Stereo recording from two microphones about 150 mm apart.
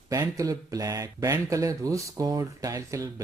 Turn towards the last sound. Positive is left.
turn(degrees=-20)  # may be behind; listen again after turning